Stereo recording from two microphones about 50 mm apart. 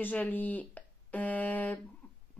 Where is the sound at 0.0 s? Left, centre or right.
Left.